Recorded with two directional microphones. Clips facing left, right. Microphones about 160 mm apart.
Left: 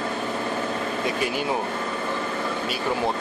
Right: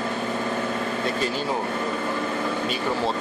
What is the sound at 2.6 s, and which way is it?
Speech, 10° left (ahead or behind).